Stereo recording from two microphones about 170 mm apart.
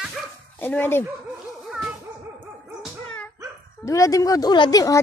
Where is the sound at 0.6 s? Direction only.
10° left (ahead or behind).